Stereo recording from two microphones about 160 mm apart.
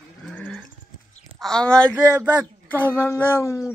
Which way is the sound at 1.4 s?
5° left (ahead or behind).